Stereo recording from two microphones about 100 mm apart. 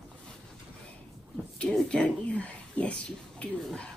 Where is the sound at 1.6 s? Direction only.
10° left (ahead or behind).